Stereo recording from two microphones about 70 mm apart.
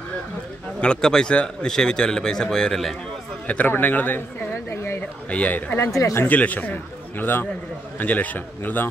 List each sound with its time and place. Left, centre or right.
0.7 s a man's voice: centre
3.4 s a man's voice: centre
4.6 s a sound: left
5.3 s a man's voice: centre
5.8 s speech: left
6.1 s a man's voice: left